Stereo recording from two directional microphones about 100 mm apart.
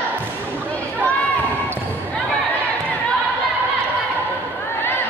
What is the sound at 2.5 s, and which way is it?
Chatter, 15° left (ahead or behind).